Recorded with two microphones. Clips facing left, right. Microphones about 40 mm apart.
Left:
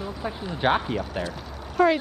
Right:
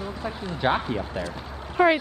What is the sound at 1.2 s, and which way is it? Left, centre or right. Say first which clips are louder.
Speech: left 1 dB; left.